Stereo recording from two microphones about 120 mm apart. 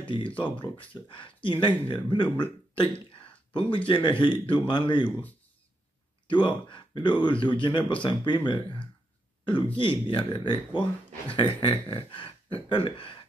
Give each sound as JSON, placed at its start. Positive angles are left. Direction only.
{"t": 0.0, "sound": "speech", "side_deg": 45}
{"t": 6.2, "sound": "speech", "side_deg": 40}